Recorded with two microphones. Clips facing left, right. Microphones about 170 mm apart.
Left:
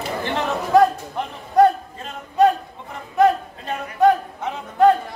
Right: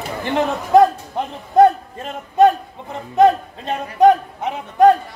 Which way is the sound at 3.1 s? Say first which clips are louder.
Right 3 dB; 20° right (ahead or behind).